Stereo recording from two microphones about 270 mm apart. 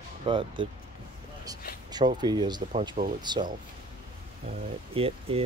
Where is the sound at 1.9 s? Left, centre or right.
Centre.